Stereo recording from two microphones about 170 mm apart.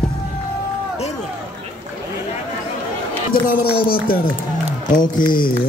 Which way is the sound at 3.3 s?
60° left (ahead or behind).